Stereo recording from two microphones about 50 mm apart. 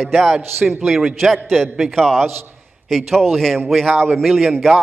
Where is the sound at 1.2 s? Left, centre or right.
Centre.